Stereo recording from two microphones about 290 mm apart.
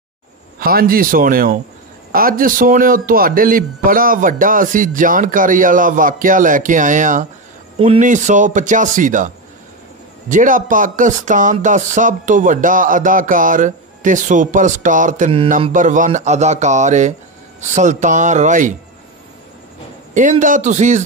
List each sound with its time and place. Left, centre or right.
0.6 s speech: right
10.3 s speech: right
20.2 s speech: right